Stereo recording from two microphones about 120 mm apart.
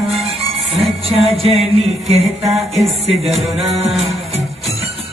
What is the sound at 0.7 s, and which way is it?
Music, 55° right (ahead or behind).